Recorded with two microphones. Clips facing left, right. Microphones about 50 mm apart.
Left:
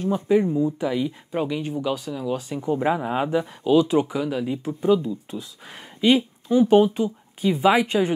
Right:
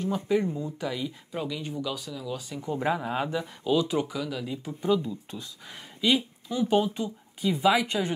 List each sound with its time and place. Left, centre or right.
0.0 s speech: left
5.4 s speech: left